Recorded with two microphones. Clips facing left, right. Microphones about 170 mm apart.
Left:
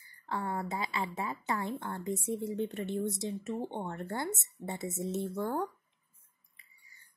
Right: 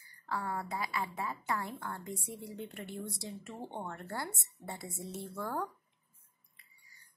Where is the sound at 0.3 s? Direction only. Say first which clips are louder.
Left 2 dB; 25° left (ahead or behind).